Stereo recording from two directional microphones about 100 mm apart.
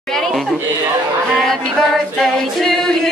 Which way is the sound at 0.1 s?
Centre (ahead or behind).